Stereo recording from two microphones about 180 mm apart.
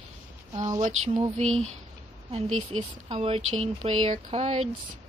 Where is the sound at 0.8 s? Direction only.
40° right (ahead or behind).